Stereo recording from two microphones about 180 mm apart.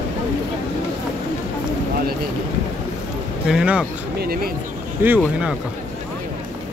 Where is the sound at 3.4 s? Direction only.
5° right (ahead or behind).